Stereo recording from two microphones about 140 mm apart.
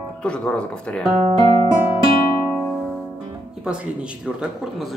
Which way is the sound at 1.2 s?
45° right (ahead or behind).